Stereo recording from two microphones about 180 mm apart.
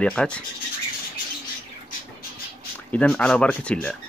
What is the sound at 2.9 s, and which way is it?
Speech, 5° left (ahead or behind).